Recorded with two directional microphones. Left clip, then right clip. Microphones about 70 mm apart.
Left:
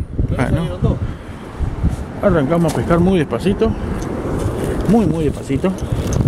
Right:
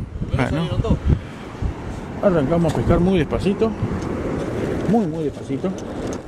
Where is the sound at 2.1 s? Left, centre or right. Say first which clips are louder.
Left 2 dB; centre.